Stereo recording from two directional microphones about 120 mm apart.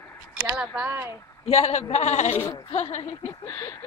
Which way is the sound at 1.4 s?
60° left (ahead or behind).